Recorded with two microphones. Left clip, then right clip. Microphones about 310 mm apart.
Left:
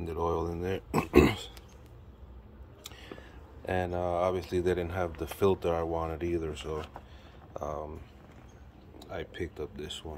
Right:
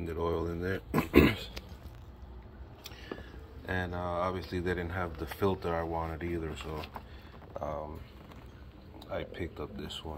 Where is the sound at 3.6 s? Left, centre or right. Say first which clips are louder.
Left 4 dB; centre.